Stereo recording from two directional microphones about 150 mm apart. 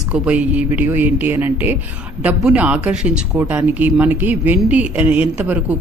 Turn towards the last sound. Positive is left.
turn(degrees=-10)  # may be behind; listen again after turning